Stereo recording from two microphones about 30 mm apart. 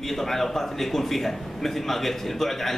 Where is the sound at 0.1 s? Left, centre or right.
Centre.